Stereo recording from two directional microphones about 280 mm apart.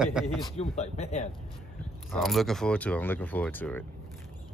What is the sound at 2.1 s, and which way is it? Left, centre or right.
Speech, centre.